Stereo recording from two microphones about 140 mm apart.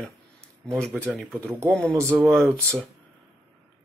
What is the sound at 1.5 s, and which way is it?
Speech, 20° right (ahead or behind).